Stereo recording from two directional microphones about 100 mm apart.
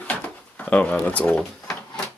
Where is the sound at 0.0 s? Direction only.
15° left (ahead or behind).